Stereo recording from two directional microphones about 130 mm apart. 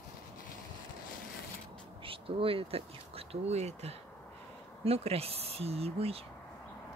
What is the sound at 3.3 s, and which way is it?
Speech, 55° right (ahead or behind).